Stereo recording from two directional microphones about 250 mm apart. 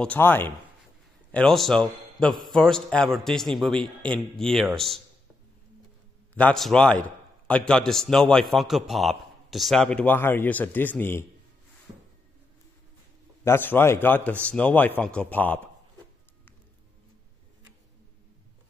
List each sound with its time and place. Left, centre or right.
0.0 s a man's voice: centre
6.3 s a man's voice: centre
13.4 s a man's voice: centre